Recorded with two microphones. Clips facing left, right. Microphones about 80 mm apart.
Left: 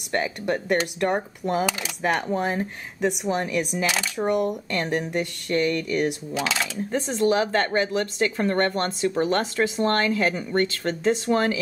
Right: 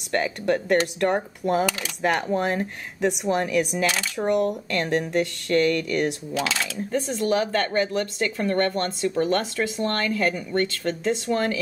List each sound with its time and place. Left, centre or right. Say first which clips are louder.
0.1 s speech: right 2 dB; centre
6.9 s speech: left 1 dB; left